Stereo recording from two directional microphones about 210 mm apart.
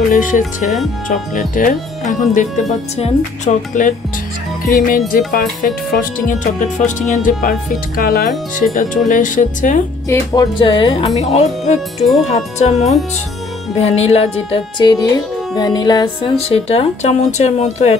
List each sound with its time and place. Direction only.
0.1 s speech: 40° left (ahead or behind)
10.0 s speech: 15° left (ahead or behind); by 12.7 s 30° left (ahead or behind)
13.7 s speech: 30° left (ahead or behind)